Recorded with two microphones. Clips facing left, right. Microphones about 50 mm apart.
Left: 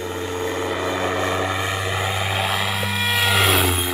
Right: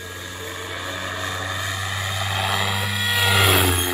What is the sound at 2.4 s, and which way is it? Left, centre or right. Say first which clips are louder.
Vehicle: left 1 dB; centre.